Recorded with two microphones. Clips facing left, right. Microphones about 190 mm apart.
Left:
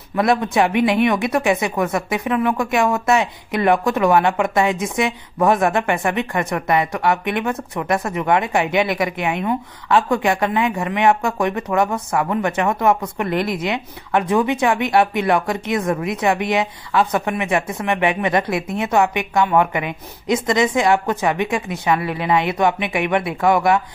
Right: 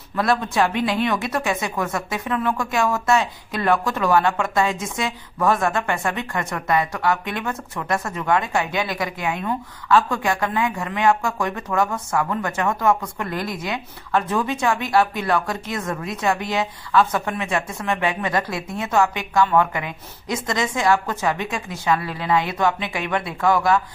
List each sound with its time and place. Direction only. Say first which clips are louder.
0.1 s speech: left 4 dB; 20° left (ahead or behind)